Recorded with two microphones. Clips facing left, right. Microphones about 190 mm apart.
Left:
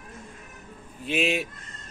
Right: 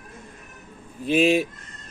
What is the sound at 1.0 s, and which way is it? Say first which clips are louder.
Speech: right 7 dB; 35° right (ahead or behind).